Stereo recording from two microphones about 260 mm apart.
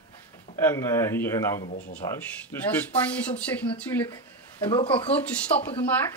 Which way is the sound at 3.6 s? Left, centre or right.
Centre.